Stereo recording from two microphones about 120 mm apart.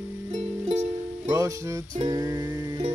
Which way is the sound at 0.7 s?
60° right (ahead or behind).